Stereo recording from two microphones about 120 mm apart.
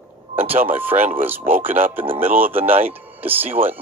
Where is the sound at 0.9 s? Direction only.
60° right (ahead or behind).